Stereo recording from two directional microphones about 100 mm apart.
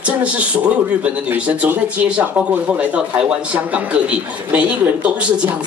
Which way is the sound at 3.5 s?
15° right (ahead or behind).